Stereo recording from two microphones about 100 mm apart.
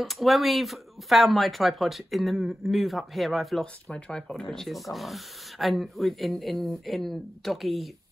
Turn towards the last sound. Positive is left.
turn(degrees=0)  # may be behind; listen again after turning